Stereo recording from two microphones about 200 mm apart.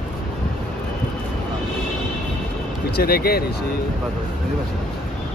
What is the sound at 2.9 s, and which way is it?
Speech, 50° left (ahead or behind).